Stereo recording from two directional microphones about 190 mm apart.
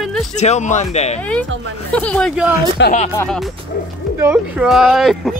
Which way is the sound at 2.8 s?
70° left (ahead or behind).